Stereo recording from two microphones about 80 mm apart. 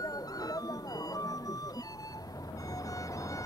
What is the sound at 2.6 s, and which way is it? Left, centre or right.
Vehicle, left.